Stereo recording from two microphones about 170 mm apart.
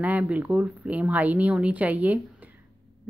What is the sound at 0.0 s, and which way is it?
A woman's voice, 10° right (ahead or behind).